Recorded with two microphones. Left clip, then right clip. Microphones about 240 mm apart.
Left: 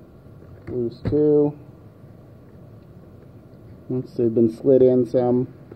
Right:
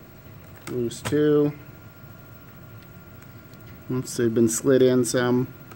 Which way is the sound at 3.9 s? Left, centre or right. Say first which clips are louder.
Left 2 dB; right.